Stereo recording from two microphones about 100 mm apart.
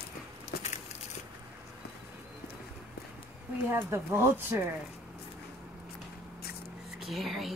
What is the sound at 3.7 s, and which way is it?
Speech, 25° right (ahead or behind).